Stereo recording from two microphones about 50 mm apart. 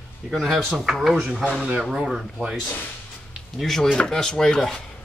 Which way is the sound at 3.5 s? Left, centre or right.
Centre.